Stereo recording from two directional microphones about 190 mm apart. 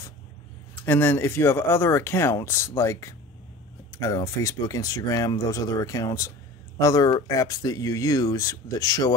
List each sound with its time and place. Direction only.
0.8 s speech: 10° left (ahead or behind)